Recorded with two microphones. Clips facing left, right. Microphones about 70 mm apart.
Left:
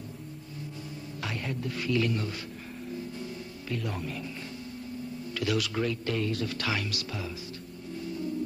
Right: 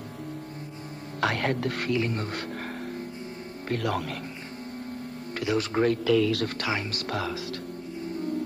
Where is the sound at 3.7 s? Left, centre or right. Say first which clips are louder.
Right 6 dB; right.